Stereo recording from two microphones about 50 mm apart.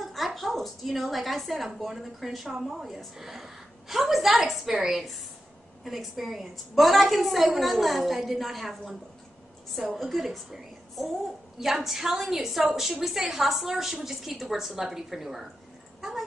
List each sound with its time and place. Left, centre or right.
0.0 s a woman's voice: centre
10.0 s a woman's voice: centre
16.0 s a sound: centre